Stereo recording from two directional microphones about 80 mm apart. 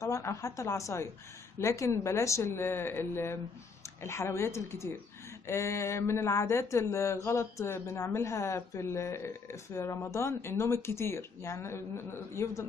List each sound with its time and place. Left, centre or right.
0.0 s a woman's voice: left